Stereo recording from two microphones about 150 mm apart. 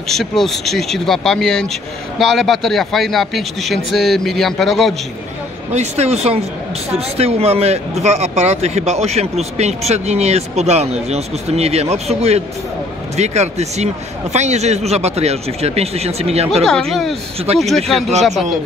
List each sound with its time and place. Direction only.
0.1 s a man's voice: centre (ahead or behind)
5.7 s speech: 45° right (ahead or behind)
16.6 s a man's voice: 5° left (ahead or behind)